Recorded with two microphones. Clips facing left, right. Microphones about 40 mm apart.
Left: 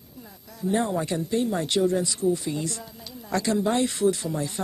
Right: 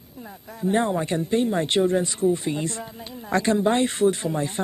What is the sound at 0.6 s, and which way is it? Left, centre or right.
Speech, right.